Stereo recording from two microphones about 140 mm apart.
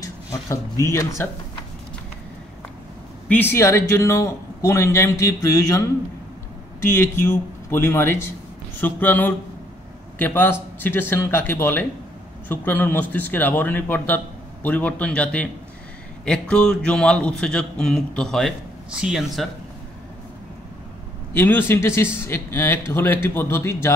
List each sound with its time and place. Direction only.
0.0 s a sound: 25° left (ahead or behind)
0.8 s speech: 20° left (ahead or behind)
3.3 s a man's voice: 15° left (ahead or behind); by 19.5 s centre (ahead or behind)
21.3 s a man's voice: 15° left (ahead or behind)